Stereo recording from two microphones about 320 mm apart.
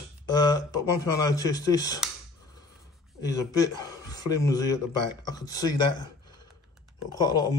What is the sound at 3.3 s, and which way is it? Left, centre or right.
A man's voice, centre.